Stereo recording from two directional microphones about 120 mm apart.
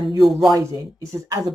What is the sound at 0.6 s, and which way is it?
Speech, 25° right (ahead or behind).